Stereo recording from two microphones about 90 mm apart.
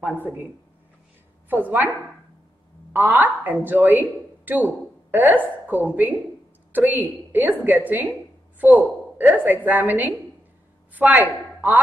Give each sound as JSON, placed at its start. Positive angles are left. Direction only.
{"t": 0.0, "sound": "a woman's voice", "side_deg": -20}
{"t": 1.5, "sound": "a woman's voice", "side_deg": -20}
{"t": 2.9, "sound": "a woman's voice", "side_deg": -20}
{"t": 9.2, "sound": "a woman's voice", "side_deg": -20}